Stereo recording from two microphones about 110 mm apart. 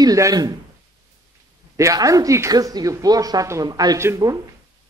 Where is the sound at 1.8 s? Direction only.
30° right (ahead or behind).